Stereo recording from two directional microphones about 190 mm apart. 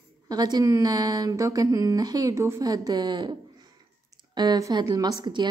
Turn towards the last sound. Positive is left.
turn(degrees=-20)  # may be behind; listen again after turning